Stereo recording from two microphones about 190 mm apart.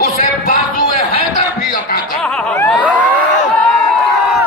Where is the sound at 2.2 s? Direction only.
5° left (ahead or behind).